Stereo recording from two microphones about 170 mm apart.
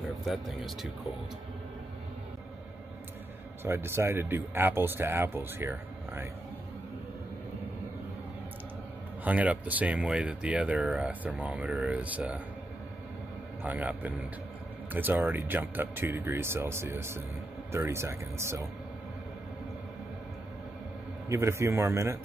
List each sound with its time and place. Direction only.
0.2 s speech: centre (ahead or behind)
3.6 s speech: 15° right (ahead or behind)
9.2 s speech: 10° right (ahead or behind)
13.6 s speech: 10° right (ahead or behind)
21.3 s speech: 15° right (ahead or behind)